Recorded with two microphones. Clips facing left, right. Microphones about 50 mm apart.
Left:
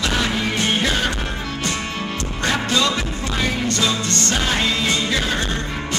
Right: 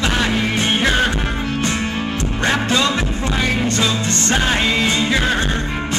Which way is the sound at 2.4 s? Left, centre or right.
Right.